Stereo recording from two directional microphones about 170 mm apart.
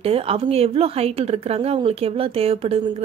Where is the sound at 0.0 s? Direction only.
35° right (ahead or behind).